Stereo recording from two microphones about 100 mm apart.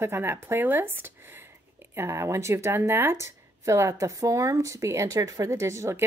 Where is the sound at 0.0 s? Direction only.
25° right (ahead or behind).